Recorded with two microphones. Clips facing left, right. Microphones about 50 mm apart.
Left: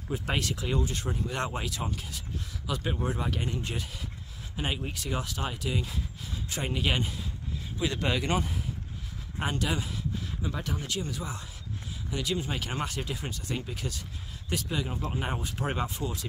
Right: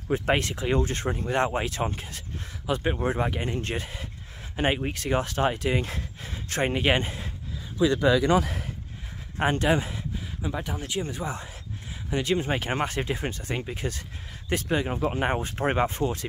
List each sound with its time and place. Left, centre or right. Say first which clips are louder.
0.1 s speech: right 7 dB; right
0.7 s speech: right 5 dB; right
3.5 s speech: right 4 dB; right
4.6 s speech: right 7 dB; right
9.4 s speech: right 8 dB; right
10.4 s speech: right 4 dB; centre
10.9 s speech: right 4 dB; right